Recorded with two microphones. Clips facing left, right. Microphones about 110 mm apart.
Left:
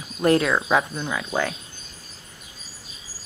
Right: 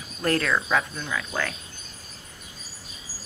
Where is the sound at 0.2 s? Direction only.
20° left (ahead or behind).